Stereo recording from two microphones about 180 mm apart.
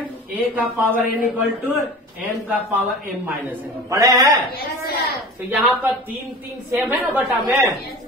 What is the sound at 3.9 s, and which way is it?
Speech, 20° right (ahead or behind).